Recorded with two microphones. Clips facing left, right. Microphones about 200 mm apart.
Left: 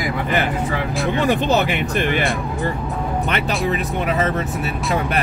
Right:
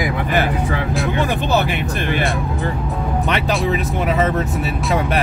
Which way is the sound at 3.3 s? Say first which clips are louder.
Right 3 dB; centre (ahead or behind).